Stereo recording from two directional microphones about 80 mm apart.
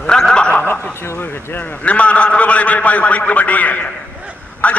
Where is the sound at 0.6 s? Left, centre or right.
Left.